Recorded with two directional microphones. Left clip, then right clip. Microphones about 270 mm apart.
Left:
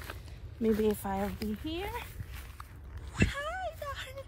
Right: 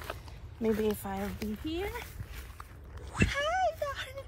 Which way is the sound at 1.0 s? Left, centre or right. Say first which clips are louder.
Left 3 dB; left.